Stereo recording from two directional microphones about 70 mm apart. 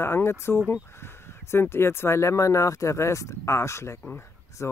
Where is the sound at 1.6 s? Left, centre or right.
Left.